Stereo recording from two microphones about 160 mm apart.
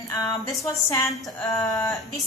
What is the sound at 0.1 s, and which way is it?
A woman's voice, 20° left (ahead or behind).